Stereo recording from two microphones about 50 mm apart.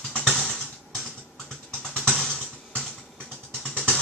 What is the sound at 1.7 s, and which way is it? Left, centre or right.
Music, centre.